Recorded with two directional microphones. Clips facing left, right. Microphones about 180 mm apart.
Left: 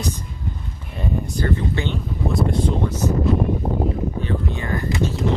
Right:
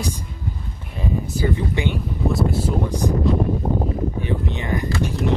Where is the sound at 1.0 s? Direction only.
10° right (ahead or behind).